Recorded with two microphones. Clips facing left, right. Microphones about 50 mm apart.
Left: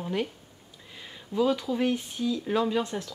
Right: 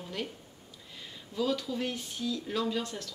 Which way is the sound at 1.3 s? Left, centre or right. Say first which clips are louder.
Left 6 dB; left.